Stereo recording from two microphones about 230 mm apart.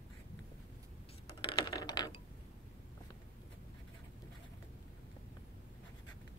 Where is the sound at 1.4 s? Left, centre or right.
Centre.